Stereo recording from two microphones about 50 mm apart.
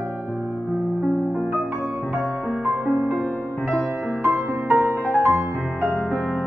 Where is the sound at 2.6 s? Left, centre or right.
Right.